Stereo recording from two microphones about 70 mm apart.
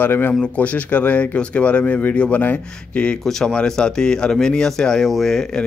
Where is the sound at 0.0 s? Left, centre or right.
Left.